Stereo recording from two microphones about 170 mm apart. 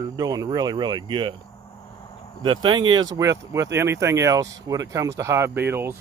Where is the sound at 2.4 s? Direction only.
25° right (ahead or behind).